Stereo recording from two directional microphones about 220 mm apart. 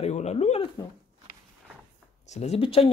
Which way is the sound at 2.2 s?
30° left (ahead or behind).